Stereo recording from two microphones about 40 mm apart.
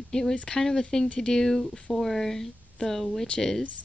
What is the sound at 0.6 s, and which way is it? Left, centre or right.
Speech, centre.